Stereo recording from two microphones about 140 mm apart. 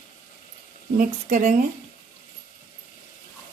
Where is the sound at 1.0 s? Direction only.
65° right (ahead or behind).